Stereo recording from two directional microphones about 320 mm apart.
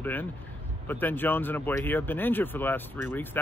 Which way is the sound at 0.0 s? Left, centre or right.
Centre.